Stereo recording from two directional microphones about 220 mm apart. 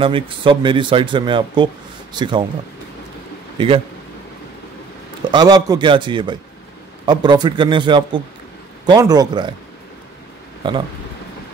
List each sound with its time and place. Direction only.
0.0 s speech: 25° right (ahead or behind)
3.5 s speech: 25° right (ahead or behind)
5.2 s speech: 20° right (ahead or behind)
10.6 s speech: 25° right (ahead or behind)